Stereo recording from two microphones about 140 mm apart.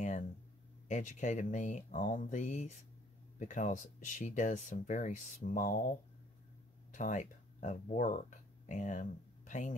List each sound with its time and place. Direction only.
0.8 s speech: 60° left (ahead or behind)